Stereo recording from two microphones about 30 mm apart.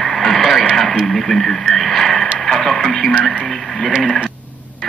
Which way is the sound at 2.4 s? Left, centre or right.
Centre.